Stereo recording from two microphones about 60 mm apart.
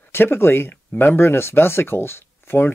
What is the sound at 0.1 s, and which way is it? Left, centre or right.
Speech, left.